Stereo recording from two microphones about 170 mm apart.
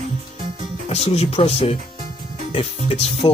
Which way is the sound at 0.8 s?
40° left (ahead or behind).